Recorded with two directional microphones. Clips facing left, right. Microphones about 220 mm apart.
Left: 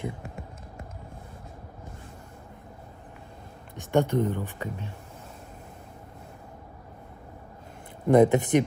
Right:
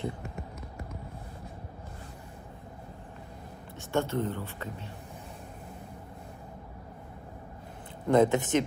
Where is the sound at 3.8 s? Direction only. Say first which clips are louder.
Left 5 dB; 15° left (ahead or behind).